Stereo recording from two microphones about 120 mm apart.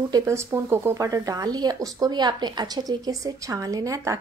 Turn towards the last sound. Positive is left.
turn(degrees=-25)  # may be behind; listen again after turning